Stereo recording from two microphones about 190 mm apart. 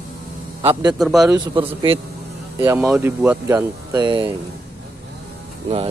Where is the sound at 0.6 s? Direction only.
30° right (ahead or behind).